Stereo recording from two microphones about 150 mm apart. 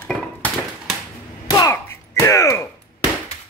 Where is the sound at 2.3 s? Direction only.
20° left (ahead or behind).